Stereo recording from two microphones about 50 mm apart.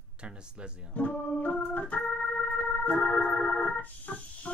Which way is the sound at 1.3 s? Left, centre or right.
Left.